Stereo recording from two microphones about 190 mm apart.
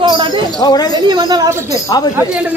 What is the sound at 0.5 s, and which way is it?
Speech, 20° left (ahead or behind).